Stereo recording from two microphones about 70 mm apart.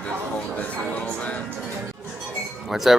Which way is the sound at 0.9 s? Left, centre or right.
Centre.